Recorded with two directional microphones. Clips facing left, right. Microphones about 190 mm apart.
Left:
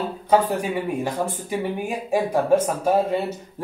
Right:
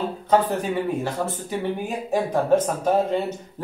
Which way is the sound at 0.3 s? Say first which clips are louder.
Left 1 dB; 10° left (ahead or behind).